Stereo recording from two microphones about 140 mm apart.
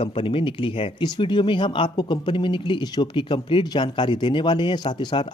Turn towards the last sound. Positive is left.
turn(degrees=30)  # may be behind; listen again after turning